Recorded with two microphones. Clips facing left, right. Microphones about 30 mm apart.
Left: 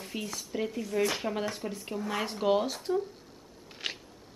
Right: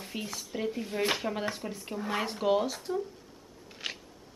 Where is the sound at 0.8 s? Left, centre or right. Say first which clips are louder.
Left 1 dB; right.